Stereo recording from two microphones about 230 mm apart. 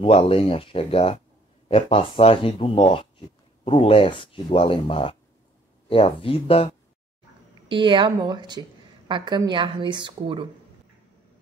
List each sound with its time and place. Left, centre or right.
0.0 s speech: left
7.7 s a woman's voice: right